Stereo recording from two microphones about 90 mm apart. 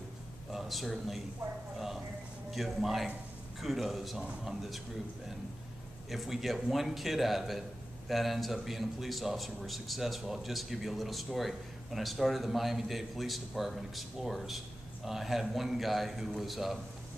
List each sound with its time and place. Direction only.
0.5 s speech: centre (ahead or behind)
2.5 s a man's voice: centre (ahead or behind)
6.0 s a man's voice: centre (ahead or behind)